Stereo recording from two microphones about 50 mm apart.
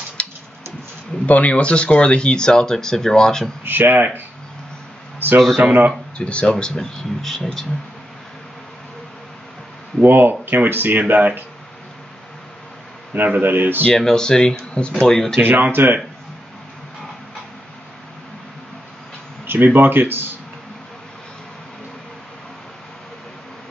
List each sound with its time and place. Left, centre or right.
0.2 s a sound: left
1.2 s speech: left; by 3.5 s centre
3.6 s speech: right
5.6 s speech: right
6.1 s speech: left; by 7.4 s centre
10.0 s speech: right
13.4 s speech: right
13.9 s speech: centre
15.4 s speech: right
19.4 s speech: right